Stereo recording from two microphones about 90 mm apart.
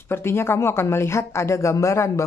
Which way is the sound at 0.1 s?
30° left (ahead or behind).